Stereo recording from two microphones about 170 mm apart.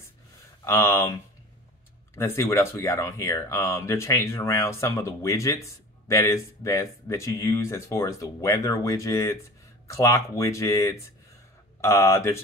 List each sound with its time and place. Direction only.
0.7 s speech: 15° left (ahead or behind)
2.1 s speech: 15° left (ahead or behind)